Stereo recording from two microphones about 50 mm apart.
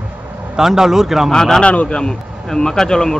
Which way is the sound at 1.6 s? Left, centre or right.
Left.